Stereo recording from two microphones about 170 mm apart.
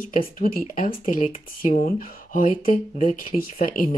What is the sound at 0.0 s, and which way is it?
Speech, 55° left (ahead or behind).